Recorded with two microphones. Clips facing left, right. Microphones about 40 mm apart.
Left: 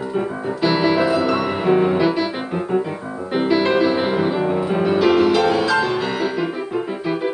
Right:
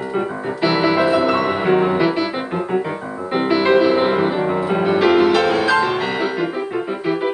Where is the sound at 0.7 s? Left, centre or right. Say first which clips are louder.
Right 2 dB; centre.